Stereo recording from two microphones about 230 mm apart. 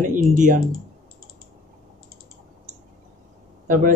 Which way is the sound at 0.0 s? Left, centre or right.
Right.